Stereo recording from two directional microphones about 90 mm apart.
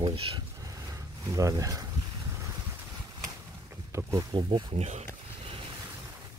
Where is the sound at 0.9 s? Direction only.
40° right (ahead or behind).